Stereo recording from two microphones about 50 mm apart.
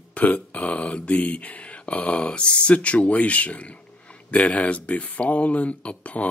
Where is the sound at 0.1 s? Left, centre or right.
Left.